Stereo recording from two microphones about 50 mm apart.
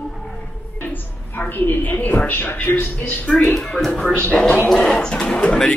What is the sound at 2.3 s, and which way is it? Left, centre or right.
Speech, left.